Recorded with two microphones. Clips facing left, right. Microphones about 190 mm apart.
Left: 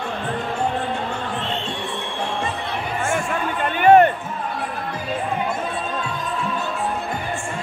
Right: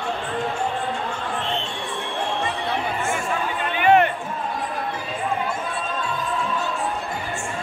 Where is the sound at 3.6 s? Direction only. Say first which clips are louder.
Left 5 dB; 45° left (ahead or behind).